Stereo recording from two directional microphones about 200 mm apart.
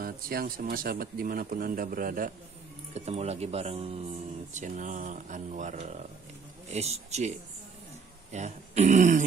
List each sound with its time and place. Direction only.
0.0 s speech: 50° right (ahead or behind)
2.9 s speech: 30° right (ahead or behind)